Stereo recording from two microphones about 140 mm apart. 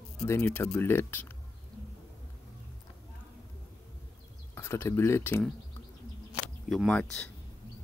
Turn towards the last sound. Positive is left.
turn(degrees=5)  # may be behind; listen again after turning